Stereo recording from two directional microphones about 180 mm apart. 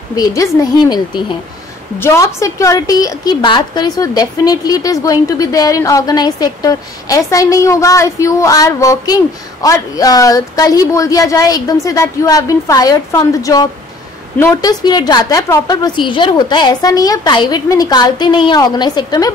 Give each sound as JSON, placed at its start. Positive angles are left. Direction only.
{"t": 0.1, "sound": "a woman's voice", "side_deg": 20}